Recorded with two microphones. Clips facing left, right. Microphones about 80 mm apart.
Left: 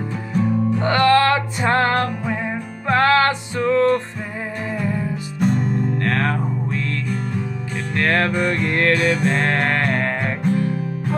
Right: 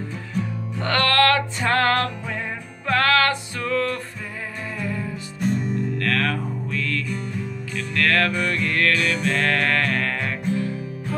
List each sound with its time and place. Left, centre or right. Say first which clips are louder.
0.7 s music: left 3 dB; centre
5.4 s music: left 4 dB; left
5.9 s music: left 3 dB; left